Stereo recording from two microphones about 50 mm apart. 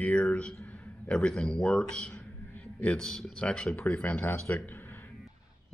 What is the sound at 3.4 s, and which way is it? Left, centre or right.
Speech, left.